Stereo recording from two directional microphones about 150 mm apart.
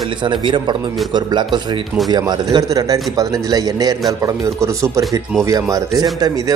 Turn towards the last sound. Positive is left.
turn(degrees=-25)  # may be behind; listen again after turning